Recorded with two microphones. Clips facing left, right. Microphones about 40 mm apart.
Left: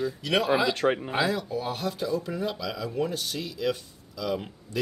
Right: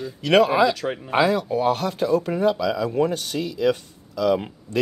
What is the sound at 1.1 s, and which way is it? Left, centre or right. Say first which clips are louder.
Speech: right 7 dB; right.